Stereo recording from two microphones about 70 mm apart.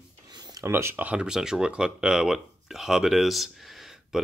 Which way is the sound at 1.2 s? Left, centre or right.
Centre.